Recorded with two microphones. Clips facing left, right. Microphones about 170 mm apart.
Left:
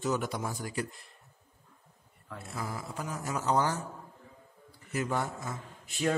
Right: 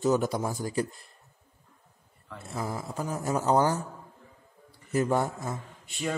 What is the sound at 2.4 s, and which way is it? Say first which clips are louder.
A man's voice: right 5 dB; 35° right (ahead or behind).